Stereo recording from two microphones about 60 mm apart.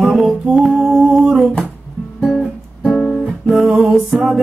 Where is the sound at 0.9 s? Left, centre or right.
Centre.